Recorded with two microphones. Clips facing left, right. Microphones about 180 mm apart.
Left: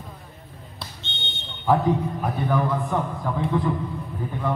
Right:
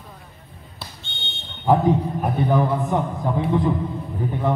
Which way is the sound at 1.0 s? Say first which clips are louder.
Left 1 dB; 20° left (ahead or behind).